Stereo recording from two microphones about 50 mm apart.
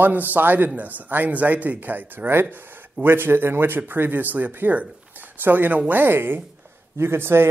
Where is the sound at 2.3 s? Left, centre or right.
Right.